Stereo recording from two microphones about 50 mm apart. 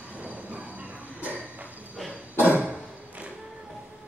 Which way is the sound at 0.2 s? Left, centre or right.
Right.